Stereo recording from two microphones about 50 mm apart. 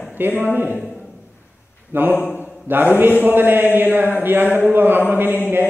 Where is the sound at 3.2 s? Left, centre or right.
Right.